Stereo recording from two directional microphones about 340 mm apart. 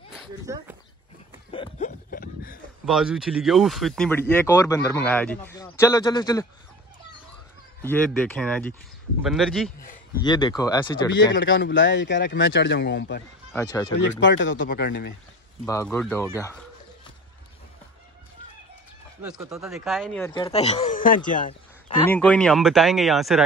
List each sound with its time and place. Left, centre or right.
0.1 s a sound: centre
1.5 s a sound: centre
2.8 s speech: centre
7.8 s speech: centre
10.2 s speech: centre
11.3 s speech: left
13.5 s speech: centre
13.9 s speech: left
15.6 s speech: centre
19.2 s speech: centre; by 21.9 s left
22.0 s speech: centre